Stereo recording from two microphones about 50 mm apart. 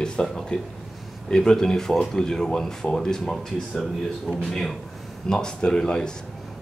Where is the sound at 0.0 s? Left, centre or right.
Centre.